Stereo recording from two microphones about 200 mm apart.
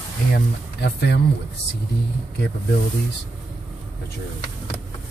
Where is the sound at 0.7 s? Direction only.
55° left (ahead or behind).